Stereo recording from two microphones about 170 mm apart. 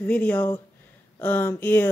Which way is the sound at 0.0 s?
10° left (ahead or behind).